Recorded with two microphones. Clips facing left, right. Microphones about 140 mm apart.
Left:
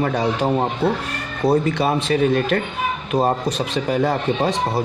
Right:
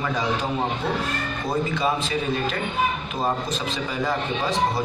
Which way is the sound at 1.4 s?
70° left (ahead or behind).